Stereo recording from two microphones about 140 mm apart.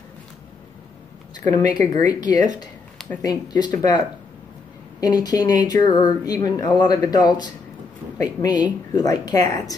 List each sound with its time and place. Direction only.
1.5 s speech: 30° left (ahead or behind)
5.0 s speech: 25° left (ahead or behind)